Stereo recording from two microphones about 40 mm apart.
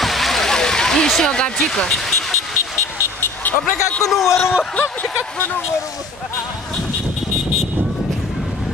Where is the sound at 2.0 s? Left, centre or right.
Centre.